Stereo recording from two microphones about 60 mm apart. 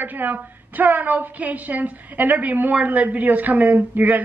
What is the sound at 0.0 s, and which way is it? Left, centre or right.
A woman's voice, right.